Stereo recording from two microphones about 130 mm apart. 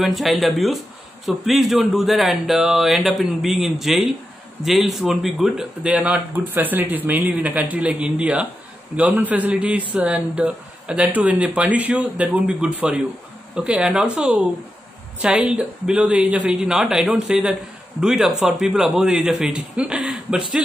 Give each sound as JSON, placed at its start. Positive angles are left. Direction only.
{"t": 0.0, "sound": "a man's voice", "side_deg": 0}